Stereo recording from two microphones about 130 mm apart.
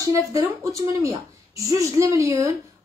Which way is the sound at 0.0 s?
25° right (ahead or behind).